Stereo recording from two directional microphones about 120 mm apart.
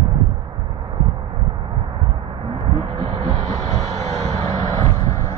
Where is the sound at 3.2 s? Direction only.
60° right (ahead or behind).